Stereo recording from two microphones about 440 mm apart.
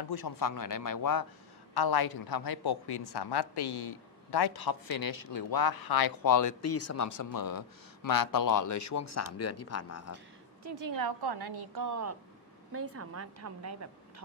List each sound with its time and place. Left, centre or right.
0.1 s speech: left
10.6 s a woman's voice: right